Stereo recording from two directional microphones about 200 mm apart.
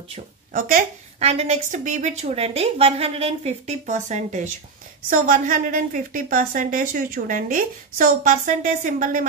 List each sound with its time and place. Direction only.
0.5 s a woman's voice: 40° right (ahead or behind)